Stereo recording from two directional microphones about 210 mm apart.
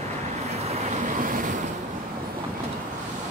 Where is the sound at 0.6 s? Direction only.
35° right (ahead or behind).